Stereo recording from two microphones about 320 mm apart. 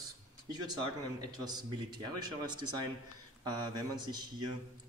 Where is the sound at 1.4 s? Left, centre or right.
Centre.